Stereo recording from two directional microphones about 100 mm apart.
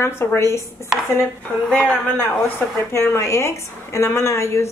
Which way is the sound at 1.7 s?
10° left (ahead or behind).